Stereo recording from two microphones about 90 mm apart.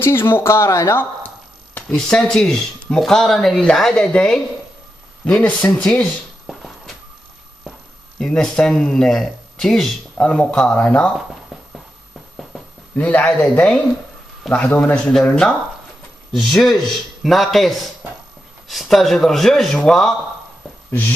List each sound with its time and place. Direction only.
0.0 s speech: 25° left (ahead or behind)
1.2 s a sound: 20° left (ahead or behind)
2.0 s speech: 10° left (ahead or behind)
8.2 s speech: 10° left (ahead or behind)
12.9 s speech: 15° left (ahead or behind)